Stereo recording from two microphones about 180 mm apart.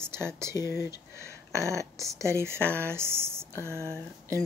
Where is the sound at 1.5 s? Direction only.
15° right (ahead or behind).